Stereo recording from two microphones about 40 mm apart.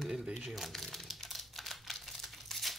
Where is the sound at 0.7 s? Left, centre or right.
Centre.